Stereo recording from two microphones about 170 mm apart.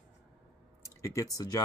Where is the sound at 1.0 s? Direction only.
20° left (ahead or behind).